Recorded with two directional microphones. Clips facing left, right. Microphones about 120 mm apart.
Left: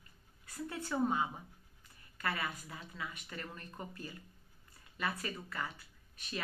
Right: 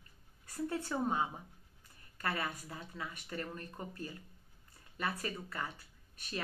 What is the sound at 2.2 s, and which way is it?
Speech, 35° right (ahead or behind).